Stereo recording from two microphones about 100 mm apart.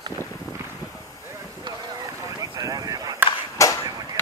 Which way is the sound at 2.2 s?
35° right (ahead or behind).